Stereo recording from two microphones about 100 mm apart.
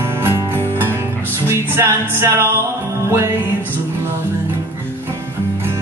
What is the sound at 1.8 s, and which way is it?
Music, 25° right (ahead or behind).